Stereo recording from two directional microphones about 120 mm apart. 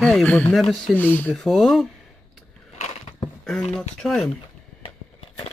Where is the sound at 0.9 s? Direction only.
15° left (ahead or behind).